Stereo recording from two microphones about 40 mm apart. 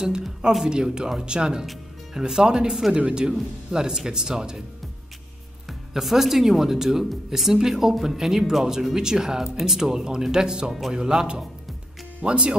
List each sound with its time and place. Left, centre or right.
0.7 s speech: right
3.0 s speech: right
5.7 s speech: centre; by 12.5 s right